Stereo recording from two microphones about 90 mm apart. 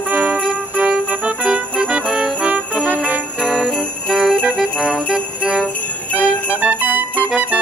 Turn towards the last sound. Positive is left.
turn(degrees=-15)  # may be behind; listen again after turning